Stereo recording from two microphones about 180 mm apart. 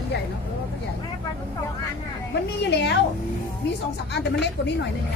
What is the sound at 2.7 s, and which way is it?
Speech, 70° left (ahead or behind).